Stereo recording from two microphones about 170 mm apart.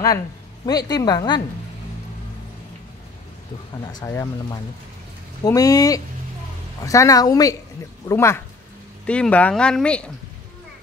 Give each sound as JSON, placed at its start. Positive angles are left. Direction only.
{"t": 0.7, "sound": "speech", "side_deg": 25}
{"t": 4.0, "sound": "speech", "side_deg": 15}
{"t": 5.4, "sound": "speech", "side_deg": 20}